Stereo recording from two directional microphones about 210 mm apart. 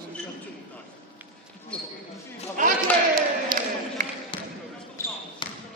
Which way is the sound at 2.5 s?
40° right (ahead or behind).